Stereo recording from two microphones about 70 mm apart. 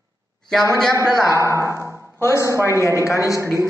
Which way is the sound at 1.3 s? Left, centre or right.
Right.